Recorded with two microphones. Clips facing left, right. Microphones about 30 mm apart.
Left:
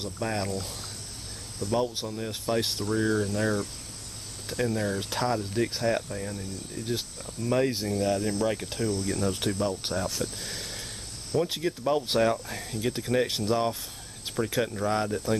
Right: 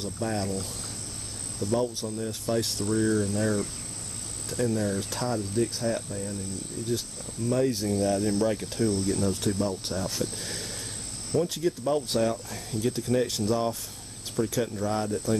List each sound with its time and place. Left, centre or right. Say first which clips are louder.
0.0 s speech: even; centre
1.6 s speech: right 2 dB; centre
2.0 s speech: even; left
7.4 s speech: even; left
7.9 s speech: right 1 dB; centre
8.2 s speech: right 2 dB; centre
8.5 s speech: right 2 dB; centre
10.0 s speech: right 1 dB; centre
11.4 s speech: right 1 dB; left